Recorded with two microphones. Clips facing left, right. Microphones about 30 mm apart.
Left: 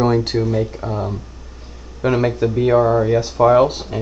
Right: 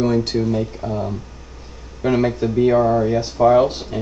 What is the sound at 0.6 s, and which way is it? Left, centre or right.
Speech, left.